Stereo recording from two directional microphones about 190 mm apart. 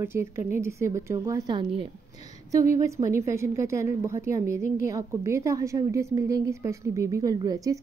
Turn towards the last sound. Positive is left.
turn(degrees=-20)  # may be behind; listen again after turning